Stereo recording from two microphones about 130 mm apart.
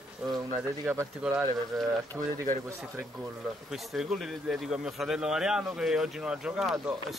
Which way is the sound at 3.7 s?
Centre (ahead or behind).